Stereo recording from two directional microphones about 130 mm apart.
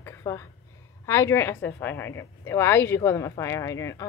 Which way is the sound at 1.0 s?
20° left (ahead or behind).